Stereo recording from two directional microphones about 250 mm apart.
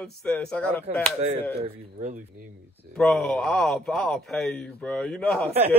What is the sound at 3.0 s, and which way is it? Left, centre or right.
Speech, centre.